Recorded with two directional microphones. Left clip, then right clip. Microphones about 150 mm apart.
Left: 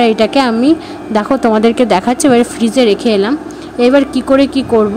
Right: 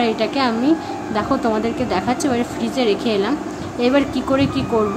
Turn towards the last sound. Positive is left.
turn(degrees=40)  # may be behind; listen again after turning